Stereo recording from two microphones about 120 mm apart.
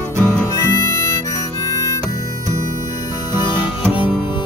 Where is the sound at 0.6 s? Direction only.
25° left (ahead or behind).